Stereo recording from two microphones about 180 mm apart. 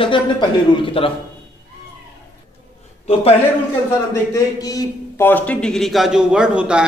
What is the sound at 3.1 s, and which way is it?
Speech, 35° left (ahead or behind).